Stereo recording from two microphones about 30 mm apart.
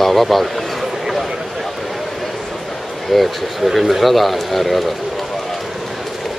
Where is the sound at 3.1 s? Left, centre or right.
Centre.